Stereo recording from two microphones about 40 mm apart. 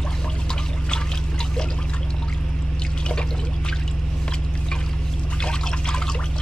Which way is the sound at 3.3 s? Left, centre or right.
Left.